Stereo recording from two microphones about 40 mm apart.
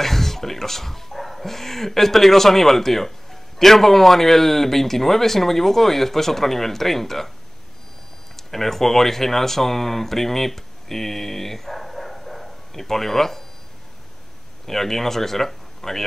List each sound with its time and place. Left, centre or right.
0.0 s a sound: centre
3.5 s speech: centre
8.5 s speech: centre
14.7 s speech: centre